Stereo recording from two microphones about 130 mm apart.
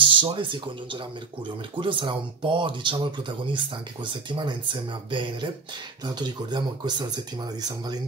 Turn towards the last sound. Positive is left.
turn(degrees=-30)  # may be behind; listen again after turning